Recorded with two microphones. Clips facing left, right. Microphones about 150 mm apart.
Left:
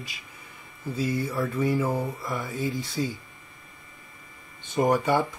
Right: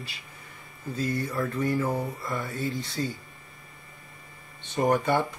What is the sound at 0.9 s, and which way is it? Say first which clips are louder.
Speech: left 1 dB; 10° left (ahead or behind).